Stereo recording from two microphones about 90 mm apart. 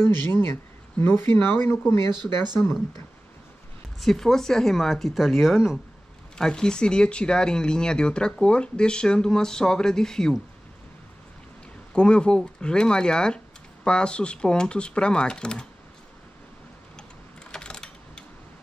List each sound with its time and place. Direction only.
0.0 s speech: 25° left (ahead or behind)
4.0 s speech: 5° left (ahead or behind)
11.9 s speech: 10° left (ahead or behind)
17.5 s mechanisms: 10° left (ahead or behind)